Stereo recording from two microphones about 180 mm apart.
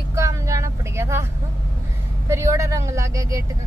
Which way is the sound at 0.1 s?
15° right (ahead or behind).